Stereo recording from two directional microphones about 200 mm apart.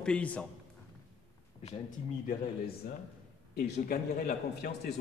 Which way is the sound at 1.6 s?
35° left (ahead or behind).